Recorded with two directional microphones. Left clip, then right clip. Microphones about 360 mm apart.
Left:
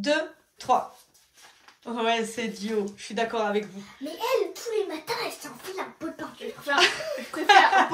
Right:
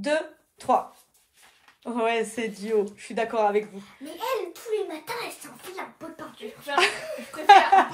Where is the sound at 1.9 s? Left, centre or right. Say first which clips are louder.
Right 1 dB; centre.